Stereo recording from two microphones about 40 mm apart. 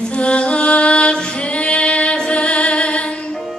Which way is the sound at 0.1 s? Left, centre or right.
Left.